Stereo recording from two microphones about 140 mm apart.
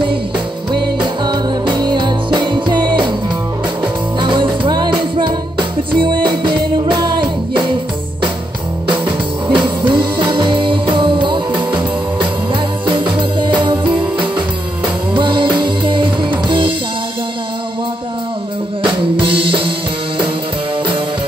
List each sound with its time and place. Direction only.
1.2 s music: 30° right (ahead or behind)
4.2 s music: 35° right (ahead or behind)
8.8 s music: 35° right (ahead or behind)
15.1 s music: 35° right (ahead or behind)
18.8 s drum kit: 40° right (ahead or behind)